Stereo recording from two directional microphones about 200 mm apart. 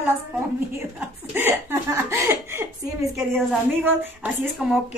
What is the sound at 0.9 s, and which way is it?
Laughter, 10° right (ahead or behind).